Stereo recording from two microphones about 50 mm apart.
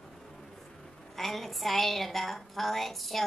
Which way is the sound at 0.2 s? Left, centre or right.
Centre.